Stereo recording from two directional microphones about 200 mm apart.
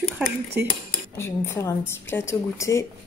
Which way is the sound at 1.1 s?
10° left (ahead or behind).